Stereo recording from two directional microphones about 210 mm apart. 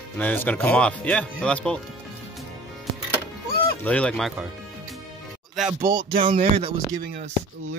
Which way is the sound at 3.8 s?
5° left (ahead or behind).